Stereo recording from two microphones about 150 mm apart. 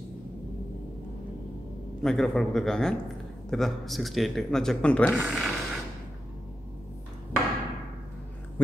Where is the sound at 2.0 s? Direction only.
Centre (ahead or behind).